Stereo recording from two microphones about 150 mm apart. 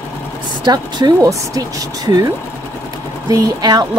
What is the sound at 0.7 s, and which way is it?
A woman's voice, 30° right (ahead or behind).